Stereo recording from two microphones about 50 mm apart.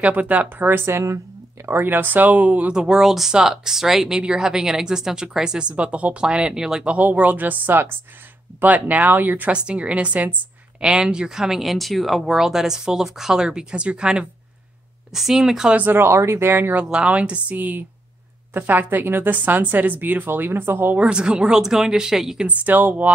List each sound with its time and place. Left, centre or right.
0.0 s speech: right
0.9 s a woman's voice: right
1.7 s speech: right
2.7 s speech: centre
6.9 s speech: right
9.5 s a woman's voice: right
10.8 s speech: centre
15.7 s speech: right
16.0 s speech: right
16.9 s a woman's voice: right
17.6 s speech: right
21.1 s speech: centre
22.5 s speech: right